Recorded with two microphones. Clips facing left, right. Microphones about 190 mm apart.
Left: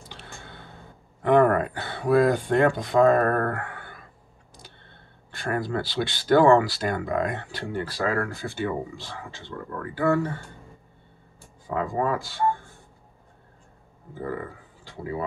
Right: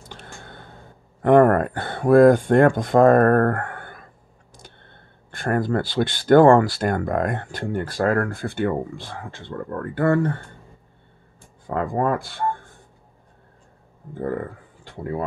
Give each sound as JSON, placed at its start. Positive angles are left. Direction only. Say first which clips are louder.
{"t": 0.1, "sound": "a sound", "louder": "right 4 dB", "side_deg": -45}
{"t": 1.2, "sound": "speech", "louder": "right 4 dB", "side_deg": -50}
{"t": 5.3, "sound": "speech", "louder": "right 5 dB", "side_deg": -50}
{"t": 11.6, "sound": "speech", "louder": "right 3 dB", "side_deg": -55}